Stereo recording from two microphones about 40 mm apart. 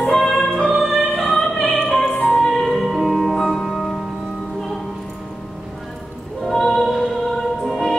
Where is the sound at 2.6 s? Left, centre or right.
Centre.